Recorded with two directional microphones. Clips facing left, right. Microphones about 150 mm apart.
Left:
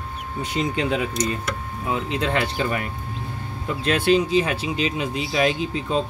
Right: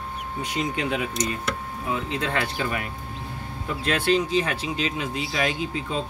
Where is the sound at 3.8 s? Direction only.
15° left (ahead or behind).